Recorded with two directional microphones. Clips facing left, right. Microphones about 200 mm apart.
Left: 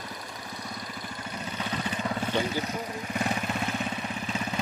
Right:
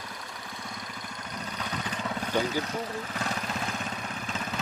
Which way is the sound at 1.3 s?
5° left (ahead or behind).